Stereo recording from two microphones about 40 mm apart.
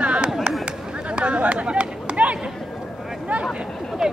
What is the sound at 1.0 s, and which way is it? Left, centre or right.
Chatter, right.